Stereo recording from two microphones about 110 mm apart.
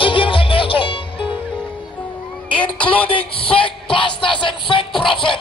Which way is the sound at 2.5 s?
10° left (ahead or behind).